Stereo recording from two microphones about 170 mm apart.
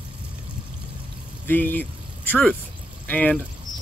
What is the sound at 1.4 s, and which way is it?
Speech, 10° left (ahead or behind).